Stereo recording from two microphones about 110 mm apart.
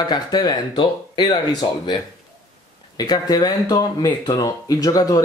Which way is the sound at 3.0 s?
40° left (ahead or behind).